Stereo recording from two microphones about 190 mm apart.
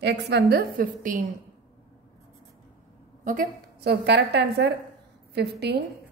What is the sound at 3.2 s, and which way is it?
A woman's voice, 45° right (ahead or behind).